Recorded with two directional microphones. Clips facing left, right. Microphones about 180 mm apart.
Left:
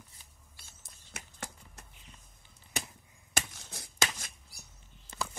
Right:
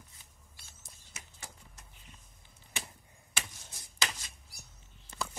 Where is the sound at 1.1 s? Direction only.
60° left (ahead or behind).